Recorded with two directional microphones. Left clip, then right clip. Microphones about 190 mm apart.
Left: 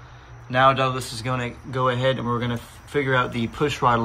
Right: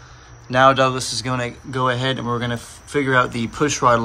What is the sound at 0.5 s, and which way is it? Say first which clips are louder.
Speech: right 4 dB; 5° right (ahead or behind).